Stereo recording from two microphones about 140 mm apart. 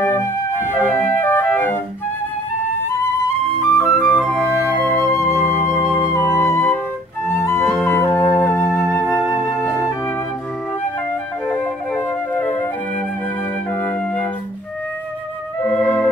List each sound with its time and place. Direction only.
0.0 s music: 15° left (ahead or behind)
3.5 s flute: 20° left (ahead or behind)
7.2 s music: 20° left (ahead or behind)
8.2 s flute: 15° left (ahead or behind)
8.6 s flute: 5° right (ahead or behind)
9.0 s music: 5° right (ahead or behind)
9.3 s music: 20° left (ahead or behind)
12.4 s flute: 15° left (ahead or behind)
15.6 s music: 15° left (ahead or behind)